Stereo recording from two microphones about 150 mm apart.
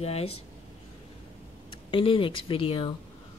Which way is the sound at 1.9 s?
35° left (ahead or behind).